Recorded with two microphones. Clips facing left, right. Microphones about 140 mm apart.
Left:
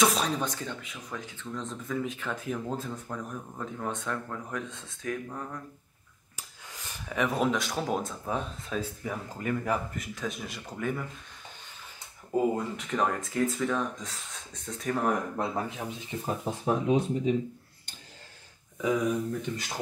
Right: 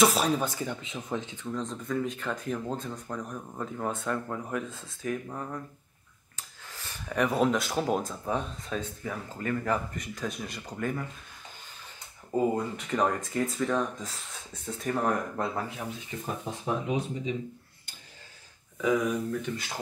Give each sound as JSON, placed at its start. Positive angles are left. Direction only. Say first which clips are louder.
{"t": 0.0, "sound": "speech", "louder": "right 2 dB", "side_deg": -5}
{"t": 0.7, "sound": "speech", "louder": "right 6 dB", "side_deg": -25}
{"t": 1.4, "sound": "speech", "louder": "right 3 dB", "side_deg": 0}
{"t": 6.3, "sound": "a sound", "louder": "even", "side_deg": 15}
{"t": 7.1, "sound": "speech", "louder": "right 2 dB", "side_deg": 0}
{"t": 12.3, "sound": "speech", "louder": "even", "side_deg": 0}
{"t": 15.3, "sound": "speech", "louder": "left 1 dB", "side_deg": 15}
{"t": 16.8, "sound": "speech", "louder": "left 5 dB", "side_deg": 0}
{"t": 18.8, "sound": "speech", "louder": "right 1 dB", "side_deg": 0}